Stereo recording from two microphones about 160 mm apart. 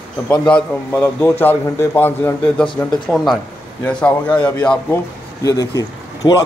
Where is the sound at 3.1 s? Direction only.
Centre (ahead or behind).